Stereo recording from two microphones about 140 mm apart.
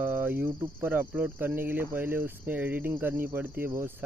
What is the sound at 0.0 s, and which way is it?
Cricket, 15° right (ahead or behind).